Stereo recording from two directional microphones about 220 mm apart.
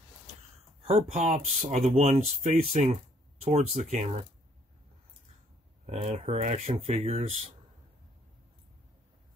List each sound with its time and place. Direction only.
0.8 s speech: 30° right (ahead or behind)
5.9 s speech: 30° right (ahead or behind)